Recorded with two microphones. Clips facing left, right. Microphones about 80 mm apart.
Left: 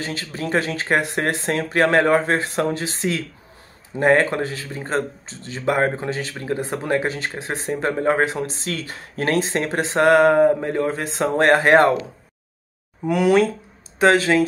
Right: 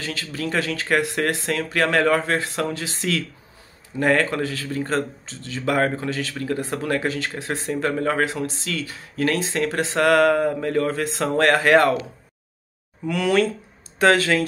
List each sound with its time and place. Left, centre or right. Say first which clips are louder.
0.0 s speech: left 1 dB; left
13.1 s speech: left 4 dB; centre